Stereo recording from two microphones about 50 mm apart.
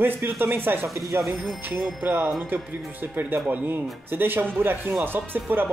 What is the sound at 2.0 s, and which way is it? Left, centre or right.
A man's voice, right.